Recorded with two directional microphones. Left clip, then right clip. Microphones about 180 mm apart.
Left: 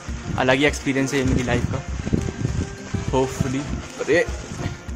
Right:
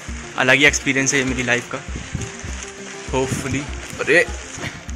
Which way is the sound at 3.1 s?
20° left (ahead or behind).